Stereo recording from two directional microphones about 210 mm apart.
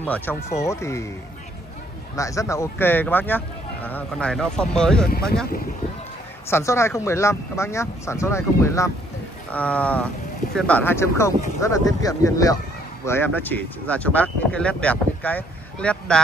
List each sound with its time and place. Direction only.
0.0 s speech: 10° left (ahead or behind)
2.1 s speech: 15° left (ahead or behind)
5.0 s speech: 45° left (ahead or behind)
6.5 s speech: 15° left (ahead or behind)